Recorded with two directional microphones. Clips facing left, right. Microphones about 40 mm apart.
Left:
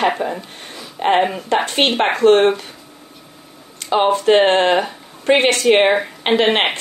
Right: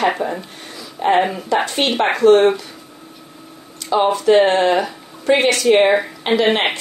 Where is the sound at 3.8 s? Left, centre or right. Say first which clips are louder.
Even; left.